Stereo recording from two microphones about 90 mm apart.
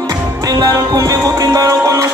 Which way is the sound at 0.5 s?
45° right (ahead or behind).